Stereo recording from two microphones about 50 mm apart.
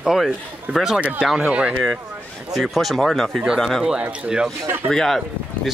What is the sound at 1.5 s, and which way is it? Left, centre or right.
Speech, right.